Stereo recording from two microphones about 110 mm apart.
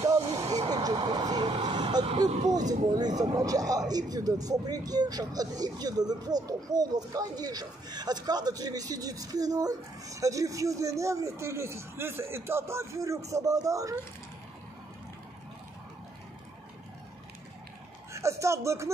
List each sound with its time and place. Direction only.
0.0 s a sound: 35° right (ahead or behind)
1.0 s vehicle: 35° right (ahead or behind)
3.0 s speech: 40° right (ahead or behind)
18.1 s speech: 25° right (ahead or behind)